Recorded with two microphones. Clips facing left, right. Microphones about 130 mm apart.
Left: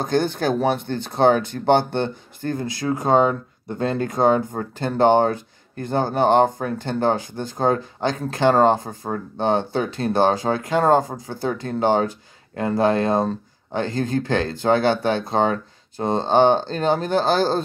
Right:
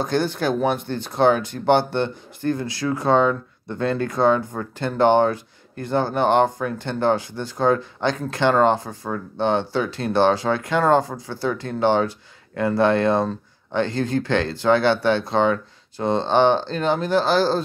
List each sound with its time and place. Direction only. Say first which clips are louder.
0.0 s speech: left 1 dB; 50° left (ahead or behind)
2.6 s speech: left 1 dB; 20° left (ahead or behind)
3.0 s speech: left 1 dB; 45° left (ahead or behind)
3.6 s speech: even; 25° left (ahead or behind)
4.2 s speech: left 1 dB; 45° left (ahead or behind)
12.5 s speech: right 1 dB; 35° left (ahead or behind); by 17.6 s 50° left (ahead or behind)